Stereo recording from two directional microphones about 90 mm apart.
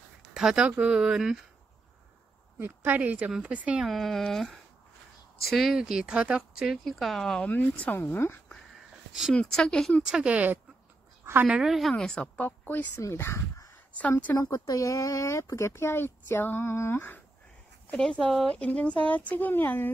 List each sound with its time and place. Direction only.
0.3 s speech: 5° right (ahead or behind)
2.6 s a woman's voice: 20° right (ahead or behind)
3.8 s speech: centre (ahead or behind)
7.4 s speech: 15° left (ahead or behind)
9.3 s speech: 10° left (ahead or behind)
10.1 s speech: 15° right (ahead or behind)
11.9 s speech: 10° left (ahead or behind)
12.4 s speech: 20° left (ahead or behind)
17.9 s speech: 5° left (ahead or behind); by 19.9 s 25° left (ahead or behind)